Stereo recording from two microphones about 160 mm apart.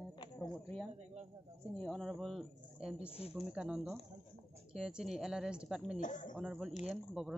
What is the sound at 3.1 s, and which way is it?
Speech, 40° left (ahead or behind).